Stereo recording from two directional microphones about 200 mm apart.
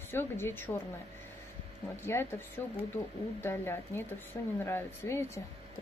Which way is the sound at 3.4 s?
10° left (ahead or behind).